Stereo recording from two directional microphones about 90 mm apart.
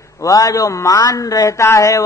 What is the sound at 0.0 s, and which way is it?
A man's voice, 40° left (ahead or behind).